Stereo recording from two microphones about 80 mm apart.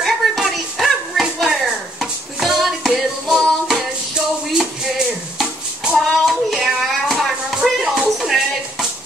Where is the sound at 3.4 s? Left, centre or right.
Centre.